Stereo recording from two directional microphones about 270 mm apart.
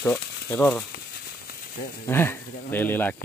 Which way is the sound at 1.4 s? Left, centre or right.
Left.